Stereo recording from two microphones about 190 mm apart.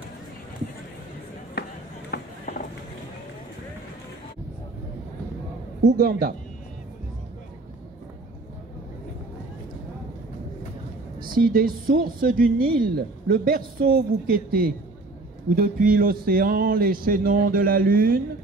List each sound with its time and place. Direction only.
1.6 s chop: 55° left (ahead or behind)
2.1 s run: 55° left (ahead or behind)
5.9 s speech: 50° right (ahead or behind)
11.3 s speech: 50° right (ahead or behind)